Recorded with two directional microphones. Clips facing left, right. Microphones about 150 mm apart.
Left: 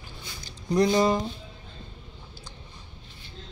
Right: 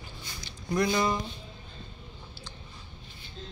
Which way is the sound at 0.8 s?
35° left (ahead or behind).